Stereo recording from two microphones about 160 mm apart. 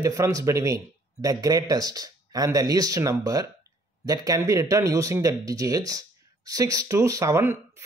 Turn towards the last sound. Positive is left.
turn(degrees=-15)  # may be behind; listen again after turning